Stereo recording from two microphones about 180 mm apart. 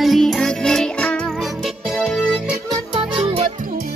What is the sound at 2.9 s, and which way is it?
Music, 30° right (ahead or behind).